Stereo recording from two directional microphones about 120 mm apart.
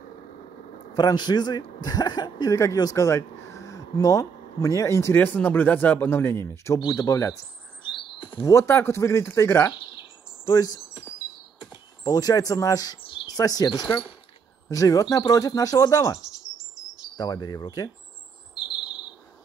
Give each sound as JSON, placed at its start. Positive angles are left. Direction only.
{"t": 0.9, "sound": "speech", "side_deg": 35}
{"t": 7.8, "sound": "bird", "side_deg": 45}
{"t": 8.5, "sound": "speech", "side_deg": 20}
{"t": 10.4, "sound": "cricket", "side_deg": 30}
{"t": 11.6, "sound": "speech", "side_deg": 35}
{"t": 17.2, "sound": "wind chime", "side_deg": 30}